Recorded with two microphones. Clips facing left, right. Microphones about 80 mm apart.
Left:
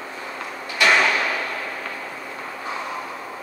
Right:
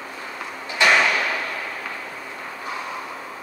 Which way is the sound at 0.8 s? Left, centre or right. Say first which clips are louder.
Even; right.